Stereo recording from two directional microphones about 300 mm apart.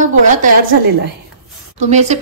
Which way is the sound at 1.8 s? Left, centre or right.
Right.